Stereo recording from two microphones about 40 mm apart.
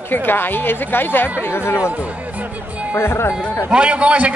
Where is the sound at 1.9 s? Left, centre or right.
Right.